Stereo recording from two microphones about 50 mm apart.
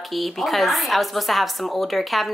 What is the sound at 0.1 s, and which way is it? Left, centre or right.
A woman's voice, centre.